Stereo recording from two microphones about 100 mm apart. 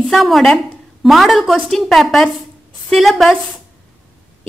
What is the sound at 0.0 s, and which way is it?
A woman's voice, centre (ahead or behind).